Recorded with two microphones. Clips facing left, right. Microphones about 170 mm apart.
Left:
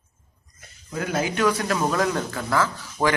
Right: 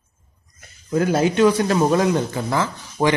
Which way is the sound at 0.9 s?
30° right (ahead or behind).